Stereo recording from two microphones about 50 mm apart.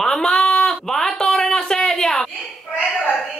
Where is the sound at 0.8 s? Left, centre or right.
Centre.